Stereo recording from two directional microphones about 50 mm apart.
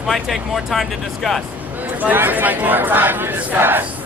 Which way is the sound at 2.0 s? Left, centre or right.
Right.